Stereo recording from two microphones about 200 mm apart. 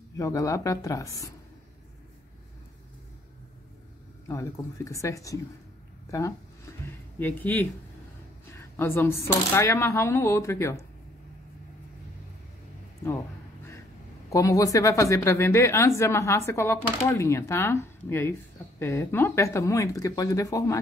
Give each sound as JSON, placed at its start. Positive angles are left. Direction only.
{"t": 0.2, "sound": "speech", "side_deg": 15}
{"t": 4.3, "sound": "speech", "side_deg": 15}
{"t": 14.3, "sound": "speech", "side_deg": 15}